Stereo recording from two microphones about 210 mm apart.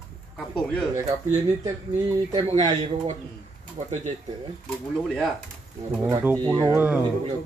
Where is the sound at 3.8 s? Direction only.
30° right (ahead or behind).